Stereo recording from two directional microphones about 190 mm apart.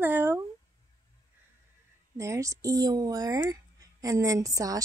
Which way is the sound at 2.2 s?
15° right (ahead or behind).